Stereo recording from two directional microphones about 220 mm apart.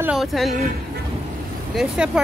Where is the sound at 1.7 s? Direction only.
Centre (ahead or behind).